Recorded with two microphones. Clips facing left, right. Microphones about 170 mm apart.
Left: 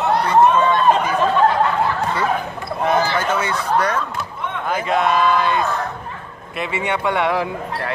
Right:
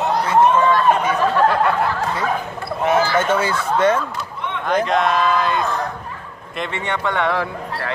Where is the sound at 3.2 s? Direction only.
30° right (ahead or behind).